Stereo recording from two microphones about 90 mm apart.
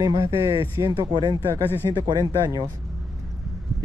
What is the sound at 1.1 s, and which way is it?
Speech, 50° right (ahead or behind).